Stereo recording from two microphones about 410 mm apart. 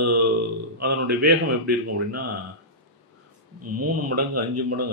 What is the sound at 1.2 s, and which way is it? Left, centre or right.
Speech, right.